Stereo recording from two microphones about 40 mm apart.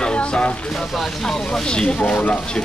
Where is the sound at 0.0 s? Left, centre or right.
Left.